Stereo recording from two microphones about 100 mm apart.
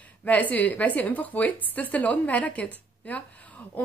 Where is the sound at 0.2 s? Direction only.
15° left (ahead or behind).